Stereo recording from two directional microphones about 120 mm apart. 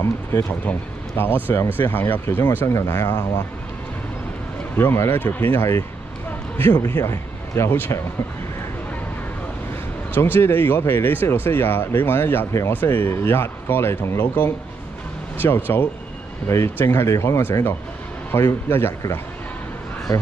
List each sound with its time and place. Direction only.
0.0 s speech: 20° left (ahead or behind)
4.7 s speech: 20° left (ahead or behind)
10.1 s speech: 20° left (ahead or behind)